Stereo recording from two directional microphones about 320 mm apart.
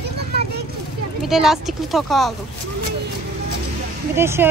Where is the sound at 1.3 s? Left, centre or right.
Centre.